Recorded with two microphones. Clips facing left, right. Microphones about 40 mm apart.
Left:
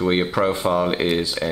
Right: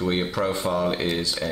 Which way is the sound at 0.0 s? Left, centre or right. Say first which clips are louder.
Left 5 dB; centre.